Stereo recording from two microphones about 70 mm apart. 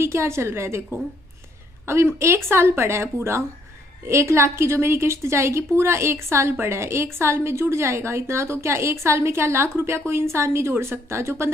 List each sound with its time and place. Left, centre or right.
0.0 s a woman's voice: right
1.9 s a woman's voice: right